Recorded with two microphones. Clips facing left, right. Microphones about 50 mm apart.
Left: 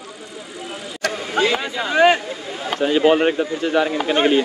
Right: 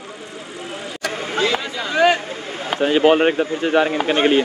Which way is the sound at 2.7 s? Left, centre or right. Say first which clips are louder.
Right 1 dB; right.